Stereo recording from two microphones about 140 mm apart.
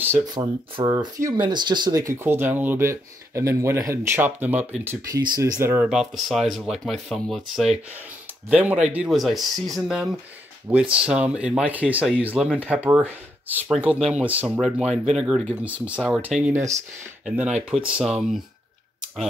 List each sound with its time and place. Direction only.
0.2 s speech: 25° right (ahead or behind)
5.1 s speech: 30° right (ahead or behind)
5.6 s speech: 15° right (ahead or behind)
5.9 s speech: 5° right (ahead or behind)
14.5 s speech: centre (ahead or behind)